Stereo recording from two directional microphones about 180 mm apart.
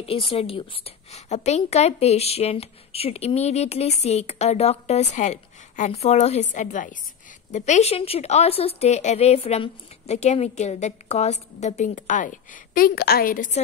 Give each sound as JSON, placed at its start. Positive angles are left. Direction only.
{"t": 0.0, "sound": "a woman's voice", "side_deg": 30}